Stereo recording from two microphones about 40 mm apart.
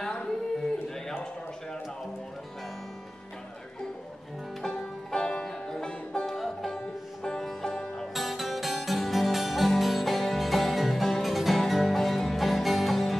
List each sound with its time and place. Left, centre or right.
4.6 s music: centre
6.2 s music: centre
8.1 s music: centre